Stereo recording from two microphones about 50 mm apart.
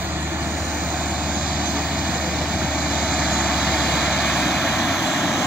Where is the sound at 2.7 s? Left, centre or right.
Centre.